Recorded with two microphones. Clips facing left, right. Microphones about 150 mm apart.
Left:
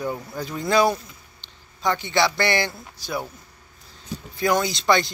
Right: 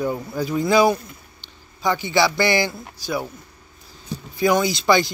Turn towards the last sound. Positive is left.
turn(degrees=-5)  # may be behind; listen again after turning